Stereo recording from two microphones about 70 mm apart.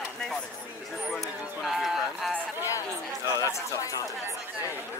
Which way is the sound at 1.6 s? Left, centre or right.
Centre.